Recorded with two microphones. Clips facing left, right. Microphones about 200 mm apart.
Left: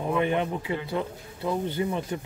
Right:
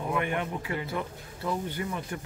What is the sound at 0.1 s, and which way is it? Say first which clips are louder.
Speech: left 5 dB; 25° left (ahead or behind).